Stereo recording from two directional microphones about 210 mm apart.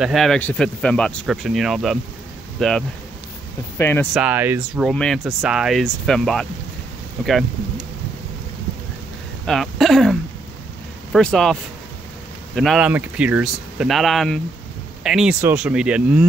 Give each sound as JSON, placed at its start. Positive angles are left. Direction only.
{"t": 0.0, "sound": "speech", "side_deg": 0}
{"t": 4.1, "sound": "speech", "side_deg": -5}
{"t": 4.8, "sound": "speech", "side_deg": 0}
{"t": 9.5, "sound": "speech", "side_deg": 0}
{"t": 12.5, "sound": "speech", "side_deg": 0}